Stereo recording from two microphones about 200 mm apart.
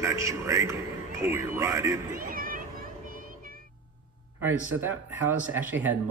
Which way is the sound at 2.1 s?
45° right (ahead or behind).